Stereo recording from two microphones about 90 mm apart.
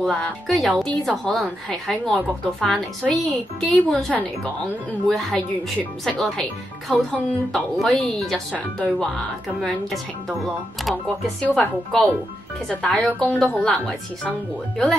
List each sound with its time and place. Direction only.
0.0 s a woman's voice: 5° left (ahead or behind)
5.0 s a woman's voice: 10° left (ahead or behind)
11.4 s a woman's voice: 15° left (ahead or behind)